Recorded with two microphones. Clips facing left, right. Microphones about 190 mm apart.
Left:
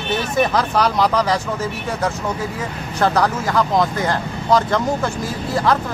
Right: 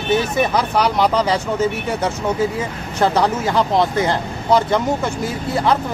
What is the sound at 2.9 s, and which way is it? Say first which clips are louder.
Speech: right 1 dB; 25° right (ahead or behind).